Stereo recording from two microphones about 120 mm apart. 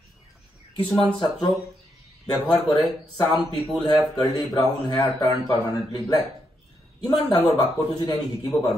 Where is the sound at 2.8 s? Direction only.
Centre (ahead or behind).